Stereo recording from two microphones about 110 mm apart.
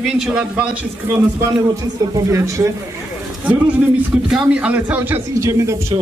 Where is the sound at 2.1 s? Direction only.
30° right (ahead or behind).